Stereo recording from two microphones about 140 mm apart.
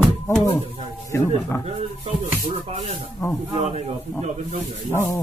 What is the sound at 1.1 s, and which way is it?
Speech, 20° left (ahead or behind).